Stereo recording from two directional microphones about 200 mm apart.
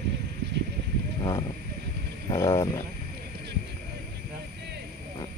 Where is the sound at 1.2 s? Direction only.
20° left (ahead or behind).